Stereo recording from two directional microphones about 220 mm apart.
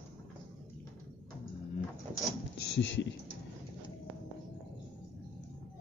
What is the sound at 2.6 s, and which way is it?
Computer keyboard, 55° left (ahead or behind).